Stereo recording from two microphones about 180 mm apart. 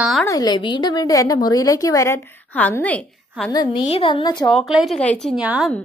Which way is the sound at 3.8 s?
30° left (ahead or behind).